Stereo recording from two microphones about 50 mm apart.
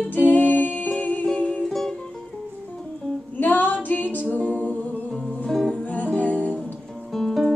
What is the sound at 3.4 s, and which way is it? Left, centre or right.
Female singing, left.